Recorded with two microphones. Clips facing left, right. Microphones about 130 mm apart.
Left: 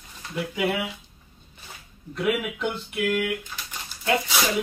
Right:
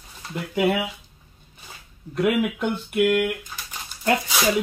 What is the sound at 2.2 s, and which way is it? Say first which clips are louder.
Speech: right 4 dB; 50° right (ahead or behind).